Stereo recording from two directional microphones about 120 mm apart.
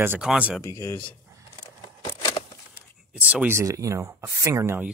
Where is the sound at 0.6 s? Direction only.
25° left (ahead or behind).